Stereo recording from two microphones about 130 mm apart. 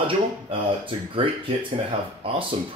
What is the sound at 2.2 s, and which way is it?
Speech, 45° right (ahead or behind).